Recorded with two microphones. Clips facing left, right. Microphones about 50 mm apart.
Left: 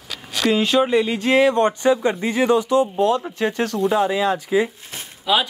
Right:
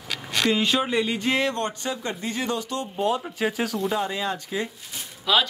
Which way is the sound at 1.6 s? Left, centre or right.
Left.